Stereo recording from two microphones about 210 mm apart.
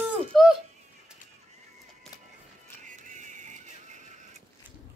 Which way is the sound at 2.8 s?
35° right (ahead or behind).